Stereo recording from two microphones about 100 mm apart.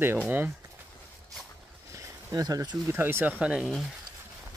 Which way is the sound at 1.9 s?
35° right (ahead or behind).